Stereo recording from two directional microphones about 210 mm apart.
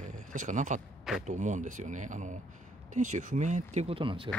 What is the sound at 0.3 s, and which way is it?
Speech, 35° right (ahead or behind).